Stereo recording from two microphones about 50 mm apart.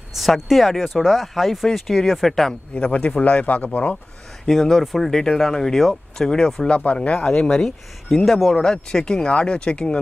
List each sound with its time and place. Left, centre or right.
0.1 s speech: centre
2.7 s a man's voice: left
4.5 s speech: centre
6.7 s a man's voice: left
7.3 s speech: centre